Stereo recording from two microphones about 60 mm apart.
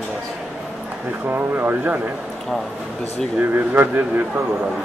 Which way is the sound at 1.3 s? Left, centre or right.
Right.